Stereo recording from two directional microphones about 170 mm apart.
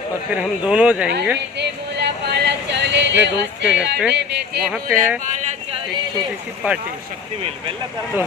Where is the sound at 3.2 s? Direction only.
90° right.